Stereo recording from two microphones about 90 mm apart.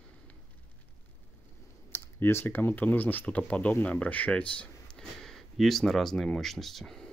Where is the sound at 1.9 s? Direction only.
30° left (ahead or behind).